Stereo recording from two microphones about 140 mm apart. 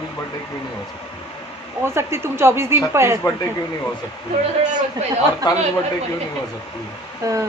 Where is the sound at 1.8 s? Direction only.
20° right (ahead or behind).